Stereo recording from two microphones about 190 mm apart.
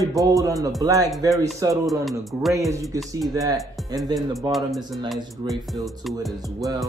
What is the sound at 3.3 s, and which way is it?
Speech, 20° right (ahead or behind).